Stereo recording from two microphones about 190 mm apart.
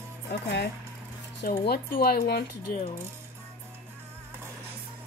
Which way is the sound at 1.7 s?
55° left (ahead or behind).